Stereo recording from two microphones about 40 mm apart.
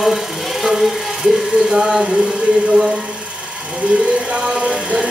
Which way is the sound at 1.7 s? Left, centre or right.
Centre.